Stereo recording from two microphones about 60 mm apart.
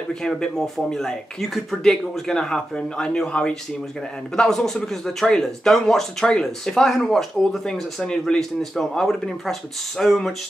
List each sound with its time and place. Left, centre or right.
0.1 s speech: centre
4.4 s speech: centre